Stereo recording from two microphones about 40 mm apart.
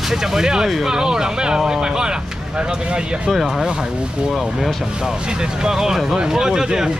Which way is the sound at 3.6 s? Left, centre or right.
Centre.